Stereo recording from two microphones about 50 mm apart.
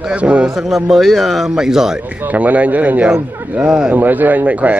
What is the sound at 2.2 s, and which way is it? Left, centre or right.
Speech, right.